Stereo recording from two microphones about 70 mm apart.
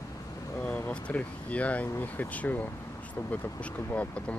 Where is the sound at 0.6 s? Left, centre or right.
Left.